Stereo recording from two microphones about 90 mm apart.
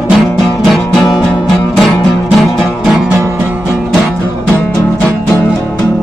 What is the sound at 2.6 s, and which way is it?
Music, 5° right (ahead or behind).